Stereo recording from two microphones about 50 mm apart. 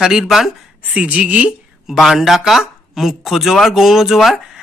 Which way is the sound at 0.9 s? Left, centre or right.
Right.